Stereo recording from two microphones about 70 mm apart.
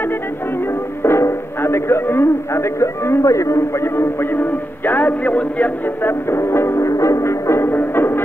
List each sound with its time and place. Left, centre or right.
1.0 s music: left
6.3 s music: left